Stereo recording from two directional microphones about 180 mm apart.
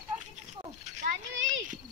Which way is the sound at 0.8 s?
40° right (ahead or behind).